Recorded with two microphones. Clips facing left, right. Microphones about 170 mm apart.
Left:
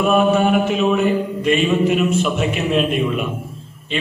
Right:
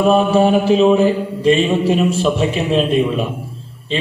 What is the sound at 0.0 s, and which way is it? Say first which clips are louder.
A man's voice: right 3 dB; 30° right (ahead or behind).